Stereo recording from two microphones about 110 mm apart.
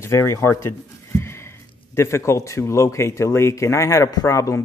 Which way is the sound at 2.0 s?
25° left (ahead or behind).